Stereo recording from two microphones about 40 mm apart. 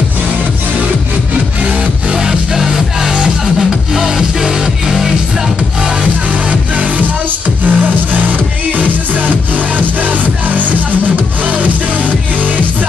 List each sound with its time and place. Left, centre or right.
1.6 s music: right
2.1 s music: centre
6.5 s music: right
7.6 s music: right